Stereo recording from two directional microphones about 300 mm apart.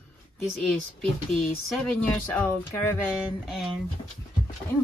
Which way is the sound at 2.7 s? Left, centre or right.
Centre.